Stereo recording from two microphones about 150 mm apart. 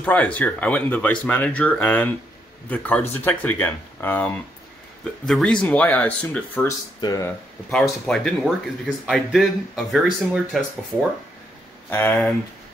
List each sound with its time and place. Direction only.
0.0 s speech: 10° left (ahead or behind)
7.0 s speech: 25° left (ahead or behind)
7.7 s speech: 5° left (ahead or behind)
11.9 s speech: 15° left (ahead or behind)